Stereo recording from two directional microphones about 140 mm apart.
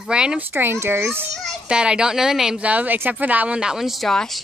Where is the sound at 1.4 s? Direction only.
5° right (ahead or behind).